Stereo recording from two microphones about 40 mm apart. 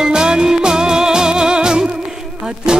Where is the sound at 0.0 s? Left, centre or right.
Centre.